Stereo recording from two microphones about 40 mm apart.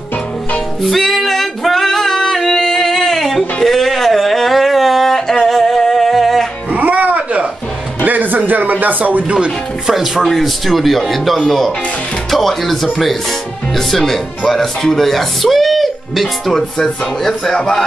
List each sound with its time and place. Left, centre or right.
0.8 s female singing: centre
3.6 s a sound: centre
6.7 s music: right
8.5 s speech: right
9.8 s speech: centre